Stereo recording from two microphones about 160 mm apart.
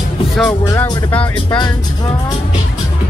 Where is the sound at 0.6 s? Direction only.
20° left (ahead or behind).